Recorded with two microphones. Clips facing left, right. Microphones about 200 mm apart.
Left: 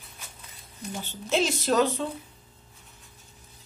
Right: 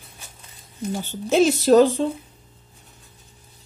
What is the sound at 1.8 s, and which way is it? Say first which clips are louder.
Speech: right 8 dB; 30° right (ahead or behind).